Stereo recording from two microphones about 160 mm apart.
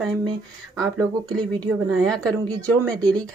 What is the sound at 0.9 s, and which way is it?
Speech, 25° right (ahead or behind).